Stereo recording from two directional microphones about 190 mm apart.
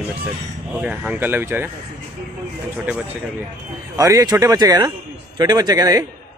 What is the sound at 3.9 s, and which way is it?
A man's voice, 20° right (ahead or behind).